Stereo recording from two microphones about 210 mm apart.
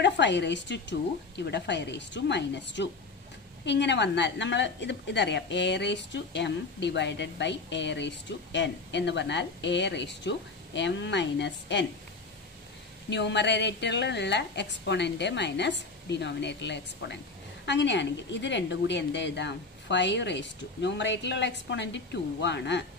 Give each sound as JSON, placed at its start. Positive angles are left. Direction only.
{"t": 0.0, "sound": "a woman's voice", "side_deg": 55}
{"t": 13.1, "sound": "a woman's voice", "side_deg": 55}